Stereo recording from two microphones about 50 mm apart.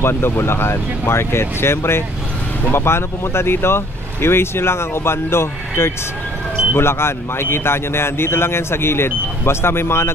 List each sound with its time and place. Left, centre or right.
0.0 s speech: left